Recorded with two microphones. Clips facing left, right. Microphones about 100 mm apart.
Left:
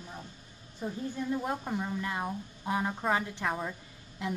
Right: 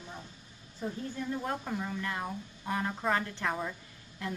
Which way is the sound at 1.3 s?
15° left (ahead or behind).